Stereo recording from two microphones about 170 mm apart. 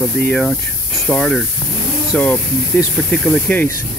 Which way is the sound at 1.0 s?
5° left (ahead or behind).